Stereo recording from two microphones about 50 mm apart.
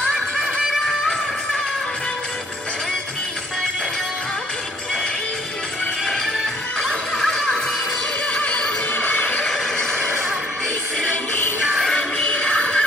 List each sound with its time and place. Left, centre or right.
6.8 s music: centre
8.3 s music: left
8.9 s neigh: left
9.5 s neigh: centre
12.3 s music: left